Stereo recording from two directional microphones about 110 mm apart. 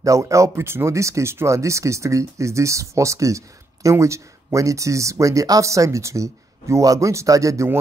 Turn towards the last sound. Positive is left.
turn(degrees=-30)  # may be behind; listen again after turning